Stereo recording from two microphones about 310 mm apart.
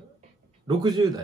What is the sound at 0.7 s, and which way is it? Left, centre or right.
Speech, centre.